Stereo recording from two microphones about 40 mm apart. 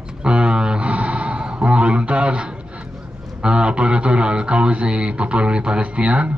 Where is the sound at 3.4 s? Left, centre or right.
Right.